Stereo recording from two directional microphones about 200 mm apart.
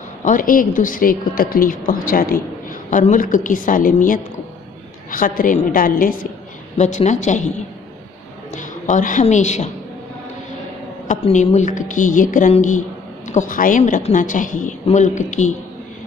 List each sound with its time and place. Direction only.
0.2 s a woman's voice: 40° left (ahead or behind)
8.5 s a woman's voice: 40° left (ahead or behind)
11.1 s a woman's voice: 35° left (ahead or behind)